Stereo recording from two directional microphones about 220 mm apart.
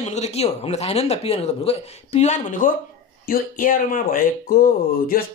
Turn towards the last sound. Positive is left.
turn(degrees=40)  # may be behind; listen again after turning